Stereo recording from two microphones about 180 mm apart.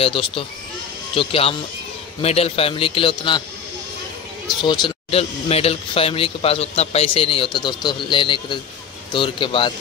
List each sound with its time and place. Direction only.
0.0 s speech: 30° left (ahead or behind)
4.5 s a man's voice: 25° left (ahead or behind)